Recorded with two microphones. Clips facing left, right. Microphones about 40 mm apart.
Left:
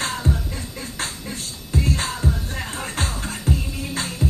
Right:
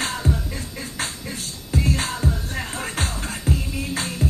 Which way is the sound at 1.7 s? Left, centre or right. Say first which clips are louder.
Even; centre.